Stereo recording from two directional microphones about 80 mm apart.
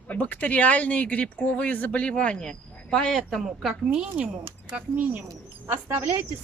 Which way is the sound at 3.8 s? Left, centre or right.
Centre.